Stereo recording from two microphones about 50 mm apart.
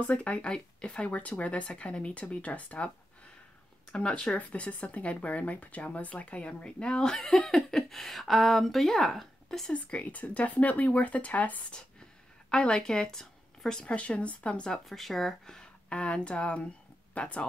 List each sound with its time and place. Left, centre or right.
0.0 s speech: left
4.2 s speech: left; by 9.7 s centre
9.7 s speech: left
12.4 s speech: centre
14.9 s speech: centre; by 17.5 s left